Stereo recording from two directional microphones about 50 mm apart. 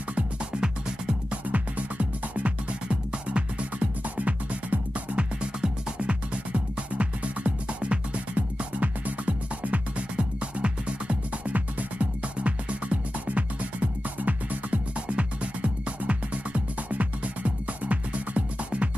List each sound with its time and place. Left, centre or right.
1.5 s music: right